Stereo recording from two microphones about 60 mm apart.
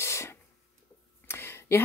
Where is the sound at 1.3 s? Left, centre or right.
Left.